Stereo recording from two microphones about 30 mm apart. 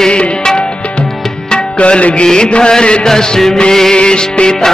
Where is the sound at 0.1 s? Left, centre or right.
Left.